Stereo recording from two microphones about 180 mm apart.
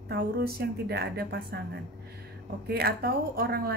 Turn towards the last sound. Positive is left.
turn(degrees=-60)  # may be behind; listen again after turning